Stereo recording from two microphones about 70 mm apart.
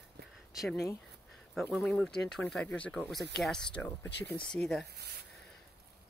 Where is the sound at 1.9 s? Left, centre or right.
Centre.